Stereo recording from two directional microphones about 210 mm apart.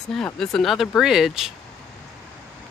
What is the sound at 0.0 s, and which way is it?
Speech, 5° left (ahead or behind).